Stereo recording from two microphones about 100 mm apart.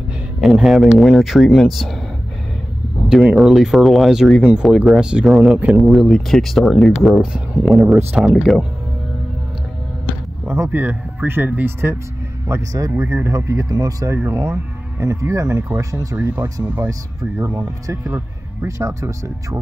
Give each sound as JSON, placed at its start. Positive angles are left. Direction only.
{"t": 0.4, "sound": "speech", "side_deg": -5}
{"t": 3.3, "sound": "speech", "side_deg": -5}
{"t": 10.6, "sound": "speech", "side_deg": -20}
{"t": 16.6, "sound": "speech", "side_deg": -20}